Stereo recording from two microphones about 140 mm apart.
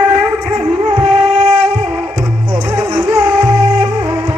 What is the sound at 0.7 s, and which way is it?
Music, 50° right (ahead or behind).